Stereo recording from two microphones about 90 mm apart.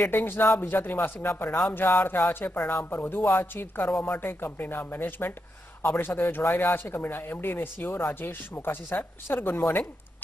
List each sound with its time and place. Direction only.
0.0 s speech: 25° left (ahead or behind)